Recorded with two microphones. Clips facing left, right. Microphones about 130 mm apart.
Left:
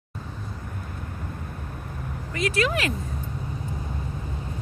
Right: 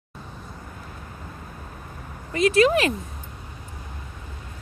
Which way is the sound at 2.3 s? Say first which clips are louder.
Right 7 dB; 25° right (ahead or behind).